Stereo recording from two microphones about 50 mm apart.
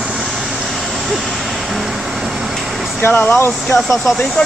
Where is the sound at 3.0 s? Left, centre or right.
Left.